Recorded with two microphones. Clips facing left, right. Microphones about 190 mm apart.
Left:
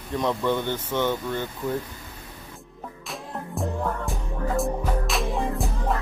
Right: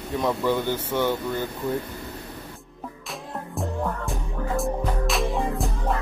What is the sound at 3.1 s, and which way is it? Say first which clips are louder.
Music: left 1 dB; centre (ahead or behind).